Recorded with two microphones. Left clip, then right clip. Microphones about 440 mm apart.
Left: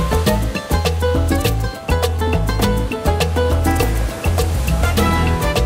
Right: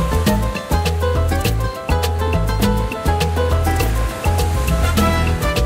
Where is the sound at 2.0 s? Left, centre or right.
Left.